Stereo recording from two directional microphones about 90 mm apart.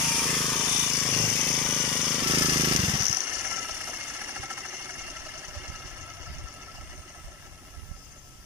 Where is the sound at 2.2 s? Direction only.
65° right (ahead or behind).